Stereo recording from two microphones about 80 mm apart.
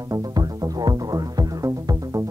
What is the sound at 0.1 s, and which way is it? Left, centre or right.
Music, right.